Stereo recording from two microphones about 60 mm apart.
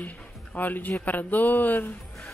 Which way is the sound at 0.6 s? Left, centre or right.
Left.